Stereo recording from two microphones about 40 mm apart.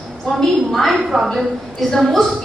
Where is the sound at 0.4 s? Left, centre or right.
Centre.